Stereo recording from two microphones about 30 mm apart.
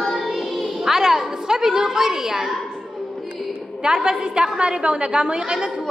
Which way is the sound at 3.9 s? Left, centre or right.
Right.